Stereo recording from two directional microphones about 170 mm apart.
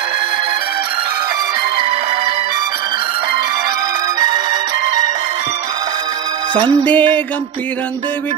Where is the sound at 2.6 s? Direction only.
25° right (ahead or behind).